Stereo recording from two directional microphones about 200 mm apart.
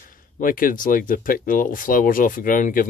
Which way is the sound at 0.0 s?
45° left (ahead or behind).